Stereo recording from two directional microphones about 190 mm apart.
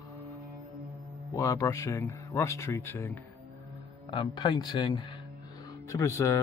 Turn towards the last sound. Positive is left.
turn(degrees=15)  # may be behind; listen again after turning